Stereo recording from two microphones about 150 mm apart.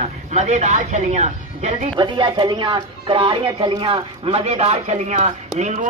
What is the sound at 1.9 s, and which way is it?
Speech, 30° right (ahead or behind).